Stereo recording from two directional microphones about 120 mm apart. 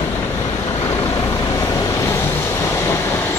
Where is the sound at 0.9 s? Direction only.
25° left (ahead or behind).